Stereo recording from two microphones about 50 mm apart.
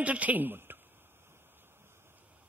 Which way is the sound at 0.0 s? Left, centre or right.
Right.